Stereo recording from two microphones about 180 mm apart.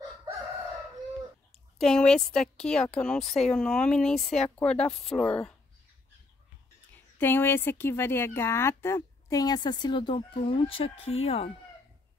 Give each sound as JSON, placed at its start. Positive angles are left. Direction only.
{"t": 1.5, "sound": "a woman's voice", "side_deg": 5}
{"t": 7.2, "sound": "speech", "side_deg": 10}